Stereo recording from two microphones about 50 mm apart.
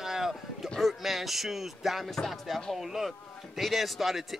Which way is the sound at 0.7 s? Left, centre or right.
Centre.